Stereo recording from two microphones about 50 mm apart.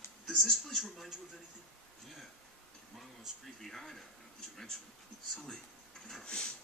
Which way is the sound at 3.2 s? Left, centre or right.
Centre.